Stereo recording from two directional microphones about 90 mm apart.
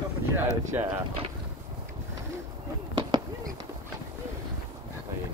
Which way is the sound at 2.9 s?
50° right (ahead or behind).